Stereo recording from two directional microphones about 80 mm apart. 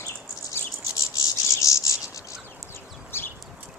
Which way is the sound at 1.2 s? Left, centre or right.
Left.